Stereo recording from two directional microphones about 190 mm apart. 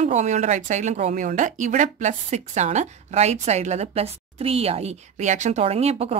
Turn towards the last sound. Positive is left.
turn(degrees=-35)  # may be behind; listen again after turning